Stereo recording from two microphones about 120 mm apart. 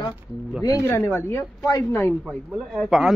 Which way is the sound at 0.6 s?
30° left (ahead or behind).